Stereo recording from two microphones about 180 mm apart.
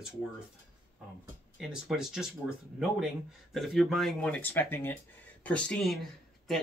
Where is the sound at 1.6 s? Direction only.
5° right (ahead or behind).